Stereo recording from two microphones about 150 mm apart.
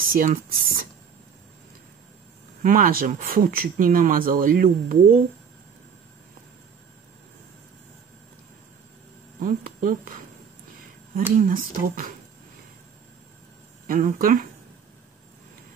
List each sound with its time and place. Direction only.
0.0 s speech: 70° right (ahead or behind)
2.6 s speech: 70° right (ahead or behind)
9.4 s speech: 65° right (ahead or behind)
11.3 s speech: 65° right (ahead or behind)
13.8 s speech: 60° right (ahead or behind)